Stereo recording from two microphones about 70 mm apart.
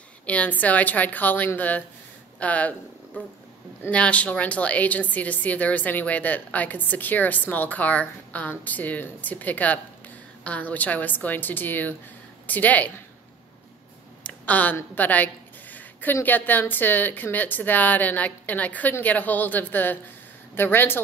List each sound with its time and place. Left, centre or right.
0.3 s a woman's voice: left
14.2 s a sound: left
15.0 s a woman's voice: left